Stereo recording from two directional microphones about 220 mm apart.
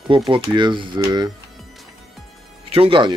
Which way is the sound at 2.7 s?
25° right (ahead or behind).